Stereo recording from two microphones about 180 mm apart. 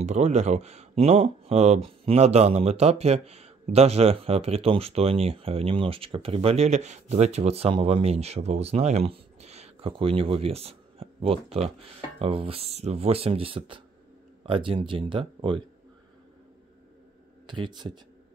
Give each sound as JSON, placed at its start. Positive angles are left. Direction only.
{"t": 0.0, "sound": "speech", "side_deg": -40}
{"t": 17.5, "sound": "speech", "side_deg": -25}